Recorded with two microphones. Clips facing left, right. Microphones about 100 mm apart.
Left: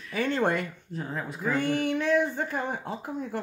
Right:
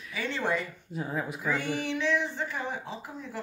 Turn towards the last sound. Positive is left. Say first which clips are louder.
# left 6 dB
turn(degrees=50)  # may be behind; listen again after turning